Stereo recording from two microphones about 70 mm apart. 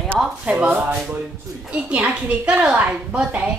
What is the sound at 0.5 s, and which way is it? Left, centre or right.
A woman's voice, centre.